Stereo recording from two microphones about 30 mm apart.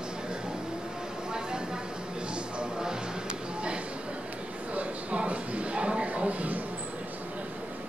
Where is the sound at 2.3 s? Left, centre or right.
Right.